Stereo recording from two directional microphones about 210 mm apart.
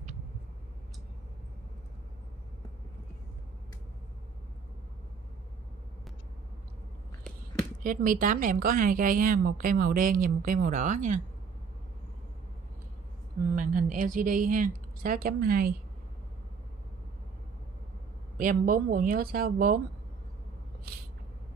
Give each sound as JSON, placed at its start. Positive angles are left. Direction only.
{"t": 7.8, "sound": "a woman's voice", "side_deg": -40}
{"t": 13.6, "sound": "speech", "side_deg": -40}
{"t": 18.4, "sound": "speech", "side_deg": -40}